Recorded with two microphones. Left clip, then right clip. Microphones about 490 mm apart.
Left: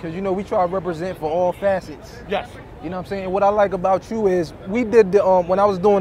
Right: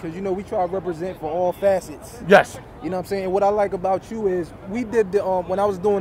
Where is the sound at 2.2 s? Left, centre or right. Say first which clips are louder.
Right 11 dB; right.